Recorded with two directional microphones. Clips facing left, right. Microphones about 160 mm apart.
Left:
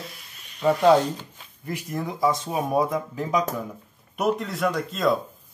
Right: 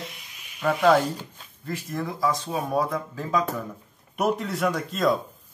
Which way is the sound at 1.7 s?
15° left (ahead or behind).